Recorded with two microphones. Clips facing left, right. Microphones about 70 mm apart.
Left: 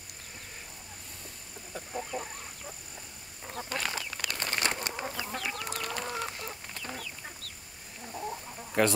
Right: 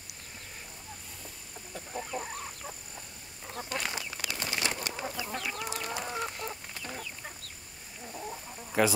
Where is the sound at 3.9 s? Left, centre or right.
Left.